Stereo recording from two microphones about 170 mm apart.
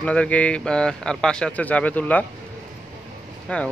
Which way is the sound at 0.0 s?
5° left (ahead or behind).